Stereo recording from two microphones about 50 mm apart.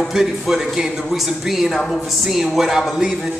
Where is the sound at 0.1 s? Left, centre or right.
Centre.